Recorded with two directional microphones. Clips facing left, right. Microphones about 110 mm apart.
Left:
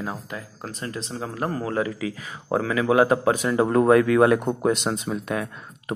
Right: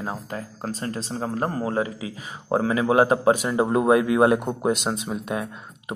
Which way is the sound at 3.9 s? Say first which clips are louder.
Left 1 dB; 20° right (ahead or behind).